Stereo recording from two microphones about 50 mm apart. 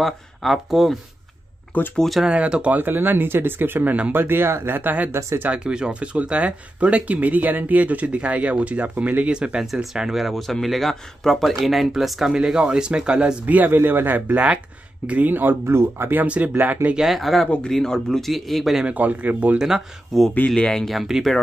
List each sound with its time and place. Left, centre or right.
0.0 s speech: centre
1.7 s speech: left
2.2 s speech: right
2.8 s speech: right
5.5 s speech: centre
12.4 s speech: centre
13.7 s speech: right
15.7 s speech: right
16.3 s speech: right
17.1 s speech: centre
18.9 s speech: right
19.6 s speech: centre
20.4 s speech: centre
20.8 s speech: centre